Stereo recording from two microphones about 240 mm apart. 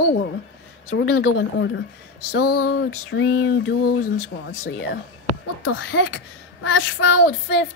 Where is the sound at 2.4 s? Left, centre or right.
Left.